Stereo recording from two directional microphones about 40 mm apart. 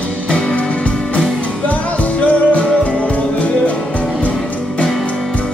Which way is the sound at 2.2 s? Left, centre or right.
Left.